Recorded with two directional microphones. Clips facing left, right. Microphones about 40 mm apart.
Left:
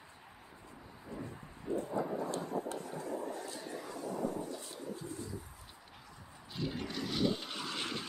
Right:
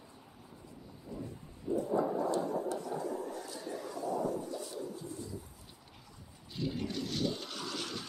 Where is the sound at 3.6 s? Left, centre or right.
Centre.